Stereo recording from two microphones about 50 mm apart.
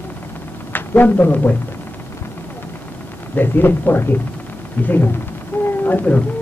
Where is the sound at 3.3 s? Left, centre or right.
Left.